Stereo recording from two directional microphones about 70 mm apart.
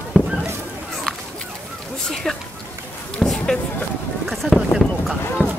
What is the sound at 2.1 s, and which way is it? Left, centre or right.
Speech, centre.